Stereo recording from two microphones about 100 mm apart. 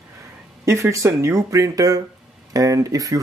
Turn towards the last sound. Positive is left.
turn(degrees=-35)  # may be behind; listen again after turning